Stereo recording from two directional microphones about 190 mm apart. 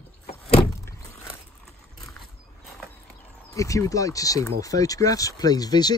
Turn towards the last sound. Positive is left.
turn(degrees=20)  # may be behind; listen again after turning